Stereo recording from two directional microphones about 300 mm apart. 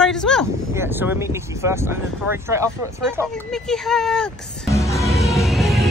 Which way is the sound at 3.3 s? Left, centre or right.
Centre.